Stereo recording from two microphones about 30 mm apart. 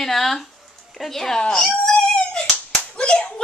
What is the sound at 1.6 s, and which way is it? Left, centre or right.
Cat, centre.